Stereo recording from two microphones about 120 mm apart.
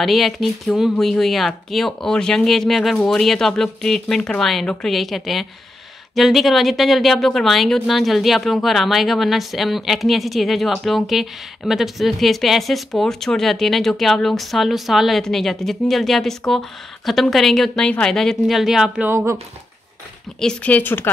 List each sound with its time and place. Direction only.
0.0 s speech: centre (ahead or behind)
19.0 s speech: 25° right (ahead or behind)
20.3 s speech: 10° left (ahead or behind)